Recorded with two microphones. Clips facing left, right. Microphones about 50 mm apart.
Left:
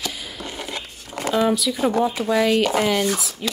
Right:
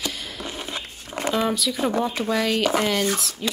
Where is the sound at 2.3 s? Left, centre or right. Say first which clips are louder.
Left 5 dB; left.